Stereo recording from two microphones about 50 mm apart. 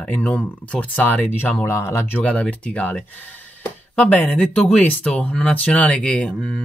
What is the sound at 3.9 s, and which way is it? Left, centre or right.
Speech, left.